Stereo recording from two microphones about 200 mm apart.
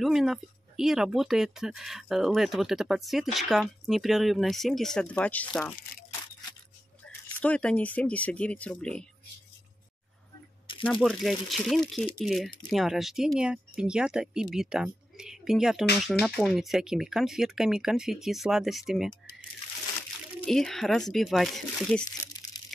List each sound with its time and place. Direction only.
0.0 s speech: centre (ahead or behind)
7.3 s speech: 5° left (ahead or behind)
10.9 s speech: centre (ahead or behind)
20.4 s speech: centre (ahead or behind)
22.1 s crumpling: 20° left (ahead or behind)